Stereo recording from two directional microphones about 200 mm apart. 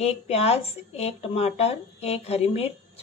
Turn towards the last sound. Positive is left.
turn(degrees=30)  # may be behind; listen again after turning